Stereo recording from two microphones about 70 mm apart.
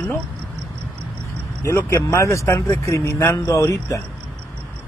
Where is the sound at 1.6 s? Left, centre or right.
Left.